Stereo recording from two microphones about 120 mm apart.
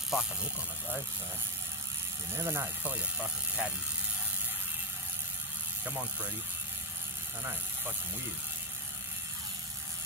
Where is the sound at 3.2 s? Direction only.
10° right (ahead or behind).